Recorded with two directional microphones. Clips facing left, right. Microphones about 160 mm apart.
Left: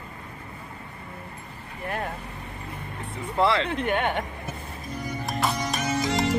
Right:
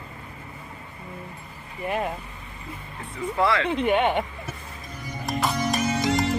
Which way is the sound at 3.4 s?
25° left (ahead or behind).